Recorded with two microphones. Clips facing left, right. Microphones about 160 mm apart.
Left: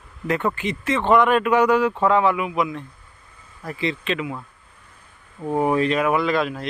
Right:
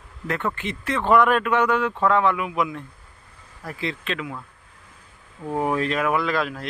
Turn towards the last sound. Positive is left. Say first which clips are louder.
# left 3 dB
turn(degrees=0)  # may be behind; listen again after turning